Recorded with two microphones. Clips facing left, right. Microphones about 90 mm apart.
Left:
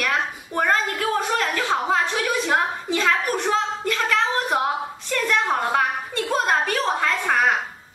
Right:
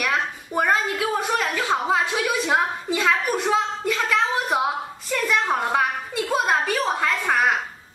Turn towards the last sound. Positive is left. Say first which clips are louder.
# left 1 dB
turn(degrees=0)  # may be behind; listen again after turning